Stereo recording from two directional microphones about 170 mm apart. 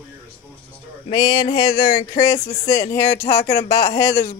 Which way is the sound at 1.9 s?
55° left (ahead or behind).